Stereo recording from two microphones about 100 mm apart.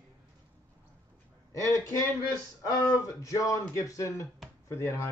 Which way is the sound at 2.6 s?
35° left (ahead or behind).